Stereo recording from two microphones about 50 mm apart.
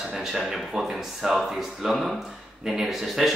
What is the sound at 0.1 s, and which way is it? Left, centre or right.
A man's voice, centre.